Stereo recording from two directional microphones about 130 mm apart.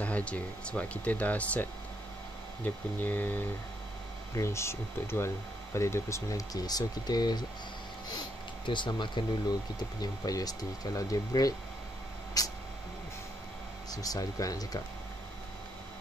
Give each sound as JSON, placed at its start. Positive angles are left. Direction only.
{"t": 0.0, "sound": "speech", "side_deg": 10}
{"t": 8.6, "sound": "speech", "side_deg": 35}
{"t": 12.4, "sound": "a sound", "side_deg": 30}
{"t": 13.8, "sound": "speech", "side_deg": 30}